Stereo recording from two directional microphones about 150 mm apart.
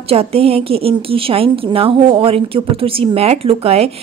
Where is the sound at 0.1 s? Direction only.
40° right (ahead or behind).